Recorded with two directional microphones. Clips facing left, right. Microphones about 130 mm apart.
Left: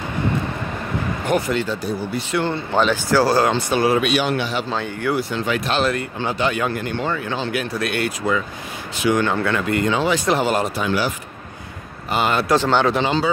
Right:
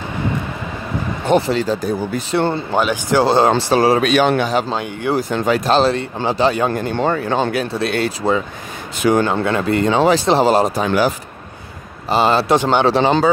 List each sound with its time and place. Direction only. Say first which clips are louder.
1.2 s speech: right 6 dB; 30° right (ahead or behind)
2.7 s speech: left 2 dB; 15° right (ahead or behind); by 4.7 s 40° right (ahead or behind)
4.7 s speech: right 2 dB; 15° right (ahead or behind)
5.1 s speech: right 6 dB; 40° right (ahead or behind)
7.5 s speech: right 4 dB; 30° right (ahead or behind)
12.1 s speech: right 4 dB; 30° right (ahead or behind)